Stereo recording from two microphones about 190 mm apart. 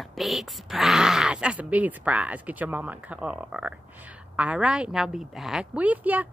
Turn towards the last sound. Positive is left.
turn(degrees=-10)  # may be behind; listen again after turning